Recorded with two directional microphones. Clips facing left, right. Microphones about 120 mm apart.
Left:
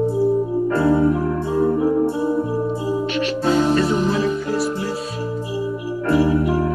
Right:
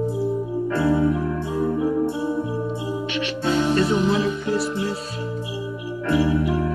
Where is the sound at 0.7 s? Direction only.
35° left (ahead or behind).